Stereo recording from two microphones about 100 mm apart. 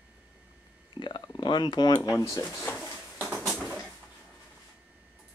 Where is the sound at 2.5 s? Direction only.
25° left (ahead or behind).